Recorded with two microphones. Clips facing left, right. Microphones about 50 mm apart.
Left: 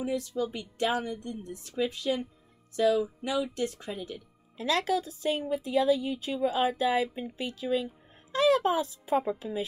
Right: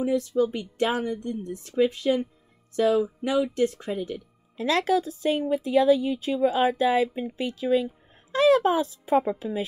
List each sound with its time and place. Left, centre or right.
0.0 s speech: right
5.5 s speech: right